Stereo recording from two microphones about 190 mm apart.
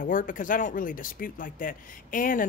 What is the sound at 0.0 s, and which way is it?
Speech, 45° left (ahead or behind).